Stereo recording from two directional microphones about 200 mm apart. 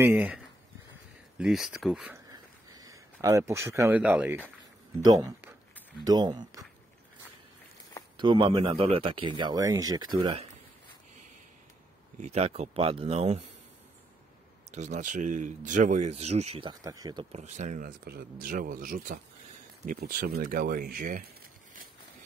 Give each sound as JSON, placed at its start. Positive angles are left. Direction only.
{"t": 0.0, "sound": "speech", "side_deg": -5}
{"t": 1.4, "sound": "speech", "side_deg": 0}
{"t": 2.2, "sound": "a sound", "side_deg": -20}
{"t": 5.0, "sound": "speech", "side_deg": -20}
{"t": 8.2, "sound": "speech", "side_deg": -25}
{"t": 12.2, "sound": "speech", "side_deg": -30}
{"t": 14.7, "sound": "speech", "side_deg": -35}
{"t": 16.8, "sound": "speech", "side_deg": -20}
{"t": 17.3, "sound": "speech", "side_deg": -35}